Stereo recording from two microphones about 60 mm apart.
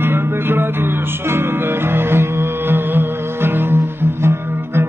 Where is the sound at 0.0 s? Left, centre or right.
Right.